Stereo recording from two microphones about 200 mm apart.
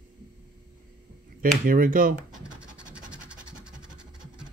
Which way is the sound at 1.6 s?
45° right (ahead or behind).